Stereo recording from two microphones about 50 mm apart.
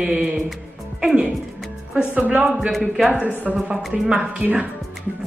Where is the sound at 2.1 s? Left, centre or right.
Right.